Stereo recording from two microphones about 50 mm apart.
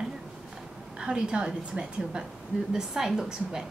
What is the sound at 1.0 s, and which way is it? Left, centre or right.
A woman's voice, centre.